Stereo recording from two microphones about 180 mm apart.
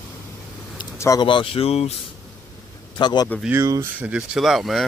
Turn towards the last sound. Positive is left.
turn(degrees=0)  # may be behind; listen again after turning